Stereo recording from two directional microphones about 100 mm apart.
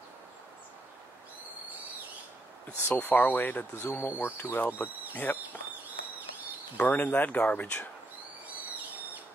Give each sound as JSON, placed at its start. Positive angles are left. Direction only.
{"t": 2.9, "sound": "speech", "side_deg": 15}
{"t": 6.8, "sound": "speech", "side_deg": 15}
{"t": 8.5, "sound": "owl", "side_deg": -15}